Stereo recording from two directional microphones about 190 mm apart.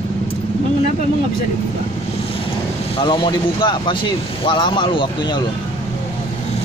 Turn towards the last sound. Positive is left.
turn(degrees=25)  # may be behind; listen again after turning